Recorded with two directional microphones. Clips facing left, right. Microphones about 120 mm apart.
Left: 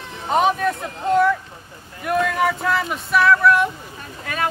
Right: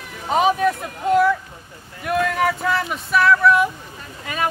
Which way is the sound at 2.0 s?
Centre (ahead or behind).